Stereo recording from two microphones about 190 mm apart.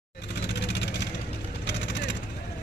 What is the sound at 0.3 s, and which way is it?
Vehicle, 65° left (ahead or behind).